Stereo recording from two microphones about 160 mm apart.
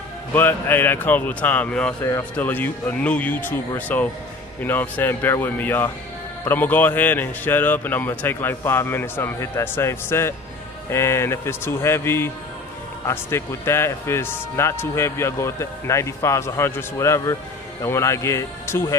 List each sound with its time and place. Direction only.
0.3 s speech: 10° left (ahead or behind)